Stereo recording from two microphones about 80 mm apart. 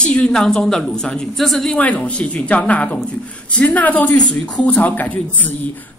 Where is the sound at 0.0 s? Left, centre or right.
Centre.